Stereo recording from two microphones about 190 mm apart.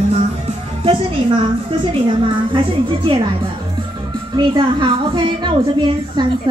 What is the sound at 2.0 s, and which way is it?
A woman's voice, 25° right (ahead or behind).